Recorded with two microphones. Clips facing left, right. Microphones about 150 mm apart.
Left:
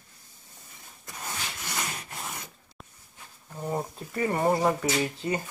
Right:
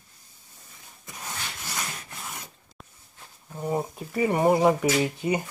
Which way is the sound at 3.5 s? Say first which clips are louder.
Right 3 dB; 10° right (ahead or behind).